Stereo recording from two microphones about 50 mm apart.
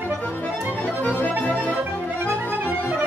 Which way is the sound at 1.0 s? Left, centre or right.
Left.